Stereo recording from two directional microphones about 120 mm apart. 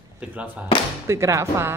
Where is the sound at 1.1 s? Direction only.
25° right (ahead or behind).